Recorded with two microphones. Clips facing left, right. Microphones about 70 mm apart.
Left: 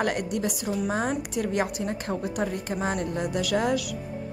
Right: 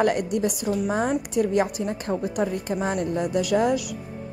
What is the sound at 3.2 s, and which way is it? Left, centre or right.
Speech, right.